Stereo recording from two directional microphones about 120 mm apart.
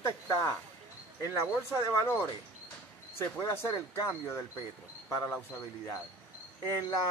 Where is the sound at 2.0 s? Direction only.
20° left (ahead or behind).